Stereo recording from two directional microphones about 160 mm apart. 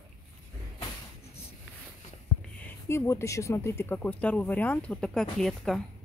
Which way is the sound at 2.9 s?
15° left (ahead or behind).